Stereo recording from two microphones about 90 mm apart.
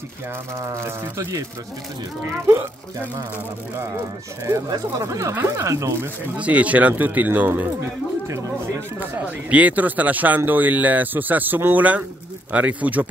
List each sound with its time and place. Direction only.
0.6 s speech: 30° right (ahead or behind)
4.5 s speech: 40° right (ahead or behind)
6.3 s speech: 15° right (ahead or behind)
9.0 s speech: 15° right (ahead or behind)